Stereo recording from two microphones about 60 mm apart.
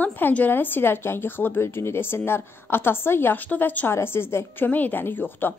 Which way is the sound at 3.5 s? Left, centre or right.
Left.